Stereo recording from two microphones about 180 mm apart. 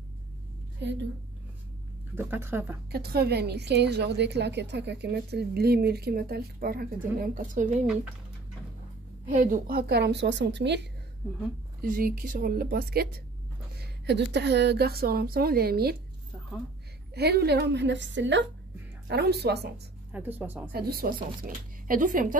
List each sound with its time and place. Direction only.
2.1 s speech: 10° right (ahead or behind)
2.9 s a woman's voice: 60° right (ahead or behind)
7.8 s speech: 5° right (ahead or behind)
9.4 s a woman's voice: 55° right (ahead or behind); by 10.9 s 70° right (ahead or behind)
11.8 s a woman's voice: 50° right (ahead or behind)
13.7 s a woman's voice: 70° right (ahead or behind)
17.1 s a woman's voice: 65° right (ahead or behind); by 18.4 s 90° right
19.0 s a woman's voice: 65° right (ahead or behind)
20.1 s speech: 10° right (ahead or behind)
20.7 s speech: 55° right (ahead or behind)